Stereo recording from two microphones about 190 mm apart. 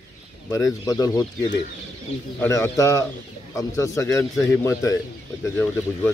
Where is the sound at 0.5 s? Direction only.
15° left (ahead or behind).